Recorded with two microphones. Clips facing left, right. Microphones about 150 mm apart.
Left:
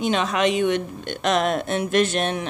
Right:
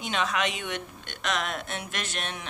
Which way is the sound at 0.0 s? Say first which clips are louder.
Left 8 dB; 35° left (ahead or behind).